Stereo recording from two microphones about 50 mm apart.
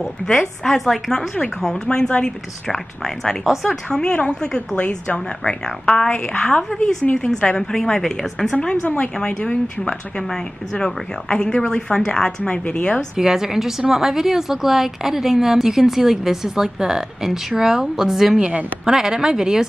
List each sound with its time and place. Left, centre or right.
0.0 s a woman's voice: centre
1.1 s a woman's voice: centre
8.8 s a woman's voice: left
13.2 s a woman's voice: centre